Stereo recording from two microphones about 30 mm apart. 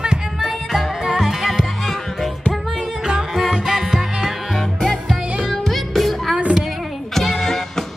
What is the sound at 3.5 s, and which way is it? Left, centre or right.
Music, centre.